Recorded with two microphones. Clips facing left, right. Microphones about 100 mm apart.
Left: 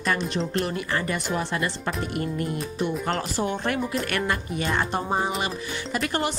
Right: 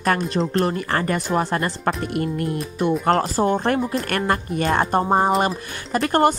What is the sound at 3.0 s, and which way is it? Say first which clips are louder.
A woman's voice: right 8 dB; 40° right (ahead or behind).